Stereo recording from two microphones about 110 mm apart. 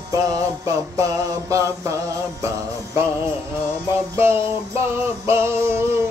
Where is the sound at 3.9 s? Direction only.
25° right (ahead or behind).